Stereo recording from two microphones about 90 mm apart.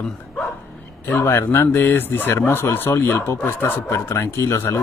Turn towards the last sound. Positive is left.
turn(degrees=30)  # may be behind; listen again after turning